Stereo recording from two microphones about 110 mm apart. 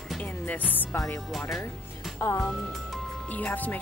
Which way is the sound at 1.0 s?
5° left (ahead or behind).